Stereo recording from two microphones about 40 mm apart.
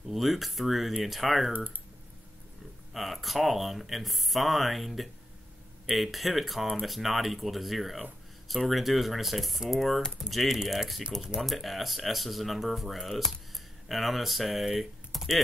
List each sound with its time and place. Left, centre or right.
0.1 s speech: centre
2.9 s speech: centre